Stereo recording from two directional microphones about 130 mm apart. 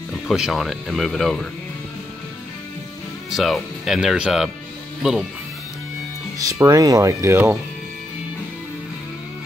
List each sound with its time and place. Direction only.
0.3 s speech: centre (ahead or behind)
3.3 s speech: centre (ahead or behind)
6.3 s speech: 25° right (ahead or behind)